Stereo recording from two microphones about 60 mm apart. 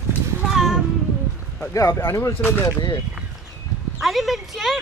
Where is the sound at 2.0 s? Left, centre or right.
Left.